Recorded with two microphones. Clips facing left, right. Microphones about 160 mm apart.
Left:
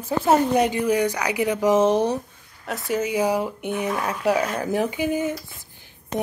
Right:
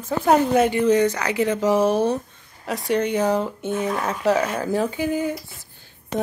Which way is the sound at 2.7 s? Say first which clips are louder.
Right 3 dB; centre (ahead or behind).